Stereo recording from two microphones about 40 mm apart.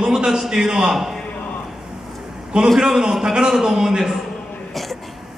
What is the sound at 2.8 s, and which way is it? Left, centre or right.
A man's voice, centre.